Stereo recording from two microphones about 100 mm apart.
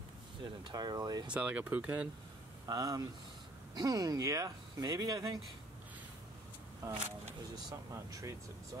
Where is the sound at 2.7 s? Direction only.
40° right (ahead or behind).